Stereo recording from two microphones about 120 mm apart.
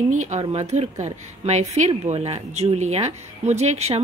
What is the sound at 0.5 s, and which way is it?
Speech, 65° right (ahead or behind).